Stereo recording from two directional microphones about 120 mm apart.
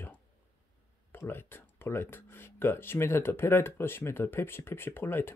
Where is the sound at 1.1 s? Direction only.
20° left (ahead or behind).